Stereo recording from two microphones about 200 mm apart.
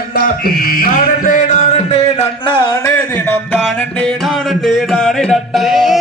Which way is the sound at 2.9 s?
10° left (ahead or behind).